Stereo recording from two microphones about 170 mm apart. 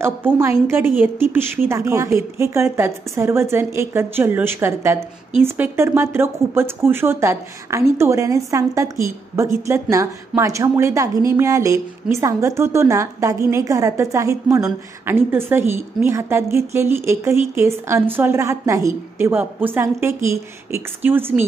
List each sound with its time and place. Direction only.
0.0 s speech: 15° right (ahead or behind)